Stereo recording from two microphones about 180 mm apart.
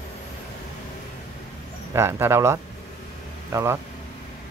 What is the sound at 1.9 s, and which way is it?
Speech, 15° right (ahead or behind).